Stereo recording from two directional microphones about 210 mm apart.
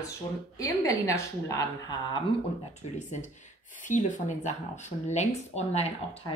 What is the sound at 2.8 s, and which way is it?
Speech, 35° left (ahead or behind).